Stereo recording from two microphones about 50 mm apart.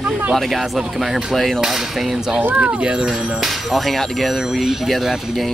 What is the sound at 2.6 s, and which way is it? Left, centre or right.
Speech, right.